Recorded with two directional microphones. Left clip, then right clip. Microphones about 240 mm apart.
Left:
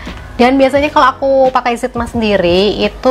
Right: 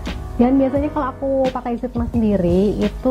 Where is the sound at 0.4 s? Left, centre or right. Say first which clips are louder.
Left 8 dB; centre.